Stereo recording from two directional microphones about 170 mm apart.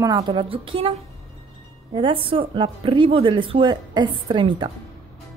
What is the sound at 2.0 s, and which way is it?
A woman's voice, 30° right (ahead or behind).